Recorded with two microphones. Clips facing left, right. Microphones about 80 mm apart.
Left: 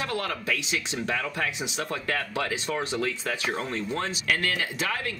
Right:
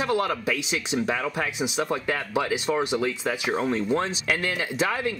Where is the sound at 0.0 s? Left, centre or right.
Centre.